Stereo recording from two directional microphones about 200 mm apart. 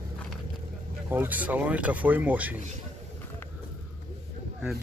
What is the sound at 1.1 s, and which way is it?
Speech, 10° right (ahead or behind).